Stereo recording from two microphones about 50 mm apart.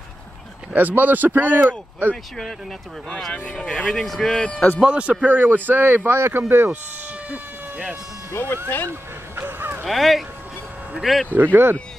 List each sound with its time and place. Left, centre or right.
0.7 s speech: right
3.5 s speech: centre
4.4 s speech: left
4.8 s speech: right
5.2 s speech: right
8.3 s speech: left
9.4 s a sound: right
9.8 s speech: centre
11.3 s speech: right